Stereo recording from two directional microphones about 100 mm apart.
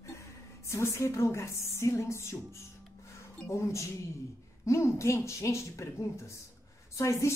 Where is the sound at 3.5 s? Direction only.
30° left (ahead or behind).